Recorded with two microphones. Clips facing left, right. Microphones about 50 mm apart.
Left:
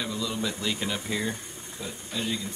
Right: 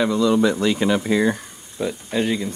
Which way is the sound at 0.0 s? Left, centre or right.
Right.